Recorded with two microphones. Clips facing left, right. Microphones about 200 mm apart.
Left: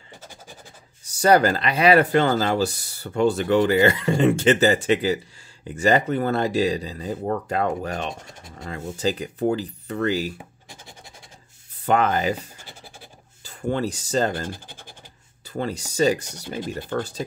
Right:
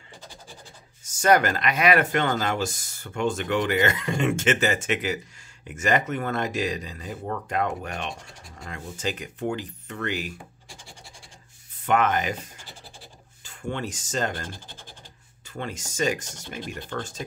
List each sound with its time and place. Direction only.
1.0 s speech: 35° left (ahead or behind)
10.3 s a sound: 20° left (ahead or behind)
11.8 s speech: 35° left (ahead or behind)
13.4 s speech: 35° left (ahead or behind)
14.5 s speech: 10° left (ahead or behind)
15.4 s speech: 35° left (ahead or behind)